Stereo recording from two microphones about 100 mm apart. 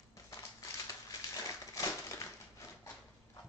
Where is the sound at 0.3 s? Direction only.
35° left (ahead or behind).